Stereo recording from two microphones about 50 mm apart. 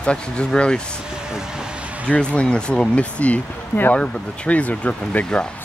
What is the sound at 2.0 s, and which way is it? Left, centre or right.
Speech, left.